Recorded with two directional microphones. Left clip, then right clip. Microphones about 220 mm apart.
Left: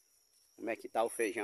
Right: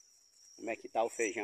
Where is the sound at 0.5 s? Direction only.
15° left (ahead or behind).